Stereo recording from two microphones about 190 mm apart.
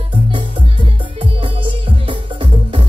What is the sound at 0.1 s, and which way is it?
Music, 25° right (ahead or behind).